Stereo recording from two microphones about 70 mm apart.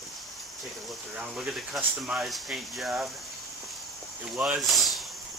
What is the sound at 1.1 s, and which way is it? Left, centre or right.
Speech, centre.